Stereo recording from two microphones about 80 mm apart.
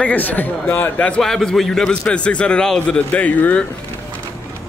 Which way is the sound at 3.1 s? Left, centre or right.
Centre.